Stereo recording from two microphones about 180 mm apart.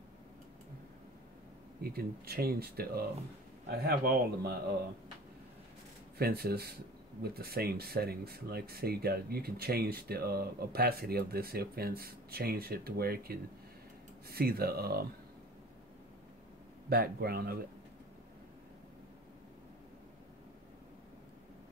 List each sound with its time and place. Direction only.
1.8 s speech: 60° right (ahead or behind)
6.1 s speech: 60° right (ahead or behind)
16.9 s speech: 60° right (ahead or behind)